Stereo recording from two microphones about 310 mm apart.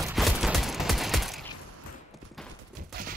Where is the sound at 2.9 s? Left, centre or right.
Right.